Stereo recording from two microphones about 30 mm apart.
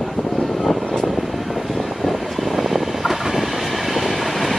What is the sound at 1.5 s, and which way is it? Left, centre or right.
Vehicle, centre.